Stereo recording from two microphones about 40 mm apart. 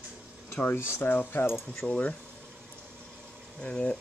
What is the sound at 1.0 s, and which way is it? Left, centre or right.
Speech, left.